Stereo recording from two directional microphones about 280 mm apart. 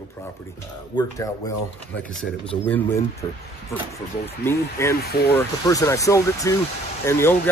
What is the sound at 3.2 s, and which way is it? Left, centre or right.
Speech, centre.